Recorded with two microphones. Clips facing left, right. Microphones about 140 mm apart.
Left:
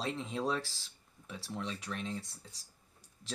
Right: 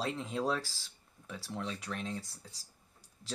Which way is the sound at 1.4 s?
35° right (ahead or behind).